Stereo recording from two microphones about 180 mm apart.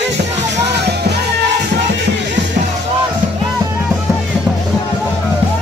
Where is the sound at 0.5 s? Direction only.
70° right (ahead or behind).